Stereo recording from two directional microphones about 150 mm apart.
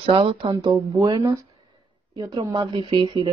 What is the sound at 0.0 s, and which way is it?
Speech, 35° right (ahead or behind).